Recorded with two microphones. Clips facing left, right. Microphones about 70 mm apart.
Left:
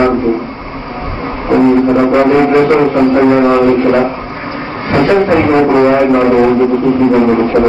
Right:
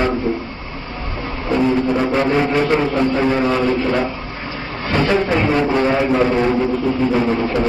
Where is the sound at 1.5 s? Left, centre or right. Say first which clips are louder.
Left 8 dB; left.